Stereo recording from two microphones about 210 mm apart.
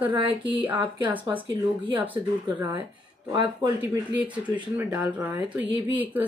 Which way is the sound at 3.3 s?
20° right (ahead or behind).